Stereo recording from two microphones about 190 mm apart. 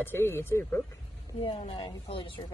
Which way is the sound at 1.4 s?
30° left (ahead or behind).